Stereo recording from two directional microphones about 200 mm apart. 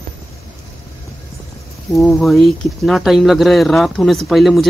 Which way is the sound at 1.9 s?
Centre (ahead or behind).